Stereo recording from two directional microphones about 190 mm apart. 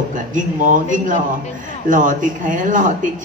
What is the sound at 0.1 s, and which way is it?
A man's voice, 45° right (ahead or behind).